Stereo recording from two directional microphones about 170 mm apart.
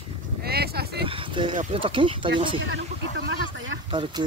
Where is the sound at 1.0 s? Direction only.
30° right (ahead or behind).